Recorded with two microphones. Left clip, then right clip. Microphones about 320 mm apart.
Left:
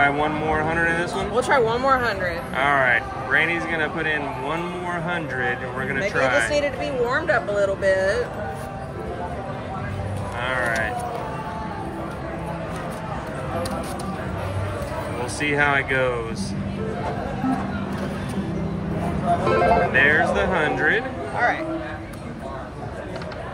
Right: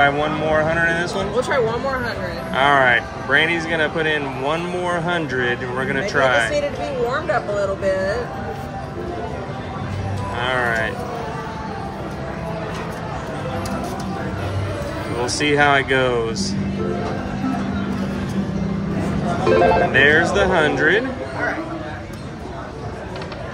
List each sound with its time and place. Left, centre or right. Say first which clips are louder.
0.0 s speech: right 3 dB; centre
1.1 s speech: even; left
2.5 s speech: right 5 dB; centre
7.1 s a sound: even; left
10.4 s speech: right 3 dB; centre
15.2 s speech: right 5 dB; centre
19.5 s speech: right 5 dB; centre